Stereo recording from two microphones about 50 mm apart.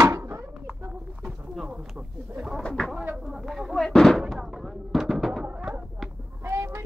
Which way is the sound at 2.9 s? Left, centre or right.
Centre.